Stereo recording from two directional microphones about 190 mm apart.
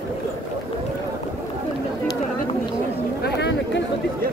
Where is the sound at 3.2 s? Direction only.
65° left (ahead or behind).